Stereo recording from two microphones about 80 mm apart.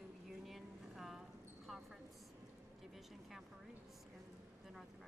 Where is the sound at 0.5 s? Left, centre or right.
Centre.